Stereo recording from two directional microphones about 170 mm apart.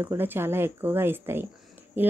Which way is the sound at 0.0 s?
10° right (ahead or behind).